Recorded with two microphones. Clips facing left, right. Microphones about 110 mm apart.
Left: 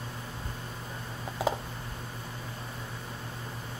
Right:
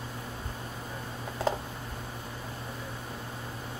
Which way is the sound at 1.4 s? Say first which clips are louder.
Even; 5° left (ahead or behind).